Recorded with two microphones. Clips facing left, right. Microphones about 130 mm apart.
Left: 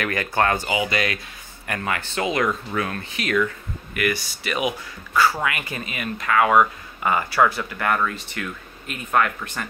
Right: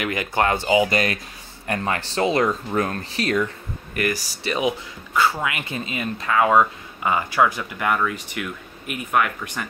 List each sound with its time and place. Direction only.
0.0 s speech: 15° right (ahead or behind)
0.8 s speech: 40° right (ahead or behind); by 9.7 s 15° right (ahead or behind)